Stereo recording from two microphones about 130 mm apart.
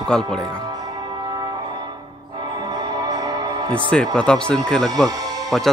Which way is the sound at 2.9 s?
30° right (ahead or behind).